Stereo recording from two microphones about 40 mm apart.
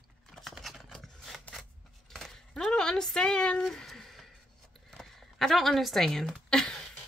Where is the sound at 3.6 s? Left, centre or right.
Centre.